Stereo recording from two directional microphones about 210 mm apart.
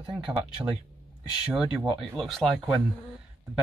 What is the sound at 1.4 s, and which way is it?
Speech, 5° right (ahead or behind).